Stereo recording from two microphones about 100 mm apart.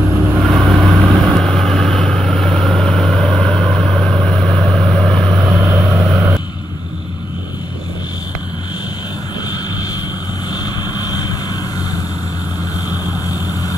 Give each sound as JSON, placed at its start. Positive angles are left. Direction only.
{"t": 0.1, "sound": "vehicle", "side_deg": 0}
{"t": 5.6, "sound": "vehicle", "side_deg": -15}
{"t": 10.5, "sound": "vehicle", "side_deg": 40}
{"t": 13.3, "sound": "vehicle", "side_deg": 35}